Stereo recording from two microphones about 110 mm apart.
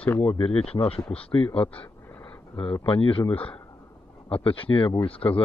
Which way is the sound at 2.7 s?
55° left (ahead or behind).